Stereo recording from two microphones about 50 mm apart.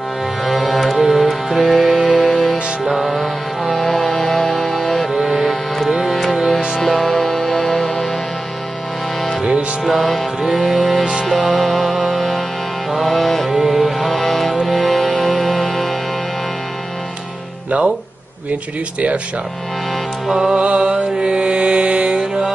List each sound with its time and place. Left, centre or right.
0.4 s music: centre
5.1 s music: centre
6.8 s music: centre
9.8 s music: centre
17.6 s music: right
20.2 s music: centre
20.5 s mantra: right